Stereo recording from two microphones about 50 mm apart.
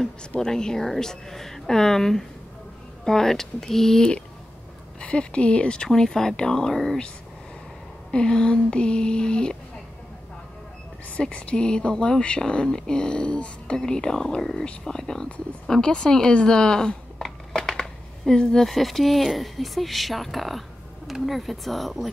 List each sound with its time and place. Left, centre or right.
0.4 s speech: centre
5.0 s speech: left; by 7.0 s centre
8.1 s speech: centre
11.1 s speech: centre